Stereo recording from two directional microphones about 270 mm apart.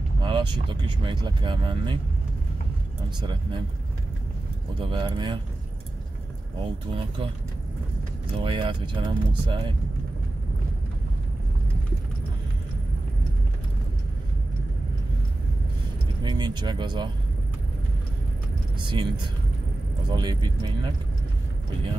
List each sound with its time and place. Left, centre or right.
0.2 s speech: centre
3.2 s speech: centre
4.7 s speech: centre
6.6 s speech: centre
8.4 s speech: centre
16.2 s speech: centre
18.8 s speech: centre